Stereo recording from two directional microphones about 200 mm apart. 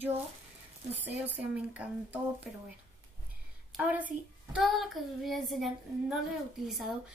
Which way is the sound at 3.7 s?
5° right (ahead or behind).